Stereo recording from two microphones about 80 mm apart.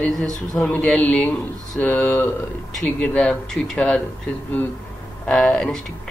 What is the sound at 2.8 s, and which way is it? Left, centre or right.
Speech, centre.